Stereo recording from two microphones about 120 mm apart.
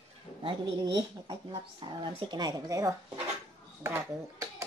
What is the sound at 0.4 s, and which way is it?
Speech, 40° right (ahead or behind).